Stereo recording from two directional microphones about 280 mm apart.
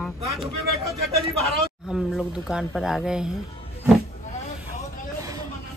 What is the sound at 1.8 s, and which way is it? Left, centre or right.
Speech, centre.